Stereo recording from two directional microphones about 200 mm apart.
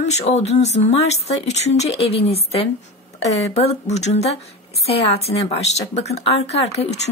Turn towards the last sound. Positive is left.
turn(degrees=30)  # may be behind; listen again after turning